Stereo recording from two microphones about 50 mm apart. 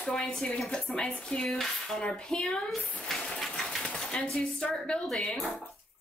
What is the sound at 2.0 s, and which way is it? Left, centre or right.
Speech, centre.